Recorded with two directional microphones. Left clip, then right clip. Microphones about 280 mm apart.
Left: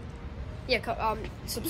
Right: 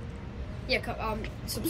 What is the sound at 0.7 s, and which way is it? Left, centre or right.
Speech, centre.